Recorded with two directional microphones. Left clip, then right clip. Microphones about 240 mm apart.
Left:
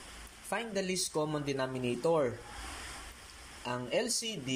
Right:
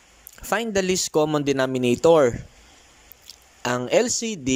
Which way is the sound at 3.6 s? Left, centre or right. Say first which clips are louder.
Right 13 dB; right.